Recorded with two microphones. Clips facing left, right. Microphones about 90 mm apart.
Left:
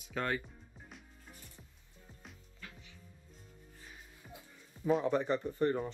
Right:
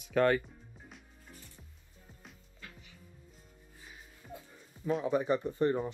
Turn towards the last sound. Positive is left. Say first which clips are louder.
# right 2 dB
turn(degrees=-15)  # may be behind; listen again after turning